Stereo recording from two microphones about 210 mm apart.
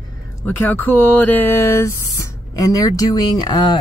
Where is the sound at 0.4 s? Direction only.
10° left (ahead or behind).